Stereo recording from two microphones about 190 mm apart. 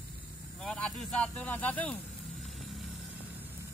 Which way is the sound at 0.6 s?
5° left (ahead or behind).